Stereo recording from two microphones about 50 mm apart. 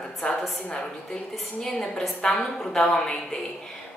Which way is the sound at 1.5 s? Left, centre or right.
Centre.